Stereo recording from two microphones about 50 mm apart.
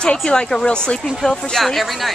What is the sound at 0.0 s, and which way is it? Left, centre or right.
Speech, centre.